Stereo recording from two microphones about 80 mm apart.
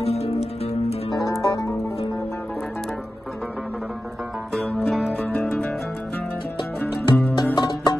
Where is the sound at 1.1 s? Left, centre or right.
Left.